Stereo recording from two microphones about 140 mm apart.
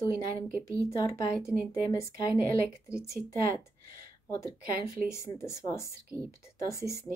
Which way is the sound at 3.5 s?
90° right.